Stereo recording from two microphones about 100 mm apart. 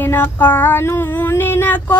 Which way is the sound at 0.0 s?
20° left (ahead or behind).